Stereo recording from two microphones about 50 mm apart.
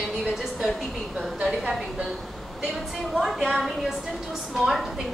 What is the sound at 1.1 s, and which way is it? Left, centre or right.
Speech, centre.